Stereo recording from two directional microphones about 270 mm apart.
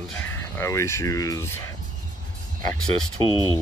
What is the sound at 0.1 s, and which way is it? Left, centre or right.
Speech, centre.